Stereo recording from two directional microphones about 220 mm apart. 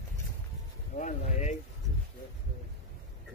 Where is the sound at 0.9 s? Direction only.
30° left (ahead or behind).